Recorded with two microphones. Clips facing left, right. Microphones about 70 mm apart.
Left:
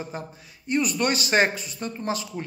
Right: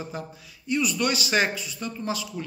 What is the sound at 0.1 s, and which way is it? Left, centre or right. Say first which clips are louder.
A man's voice: even; left.